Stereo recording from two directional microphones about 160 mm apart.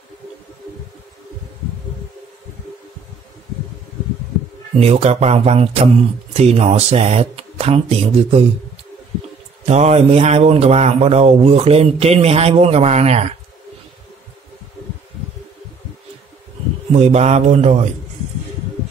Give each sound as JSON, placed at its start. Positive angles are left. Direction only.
{"t": 4.7, "sound": "a man's voice", "side_deg": -40}
{"t": 9.7, "sound": "a man's voice", "side_deg": -45}
{"t": 16.9, "sound": "speech", "side_deg": -45}